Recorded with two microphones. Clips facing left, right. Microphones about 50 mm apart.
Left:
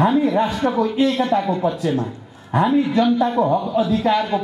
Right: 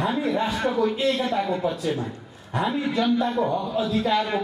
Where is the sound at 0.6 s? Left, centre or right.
Left.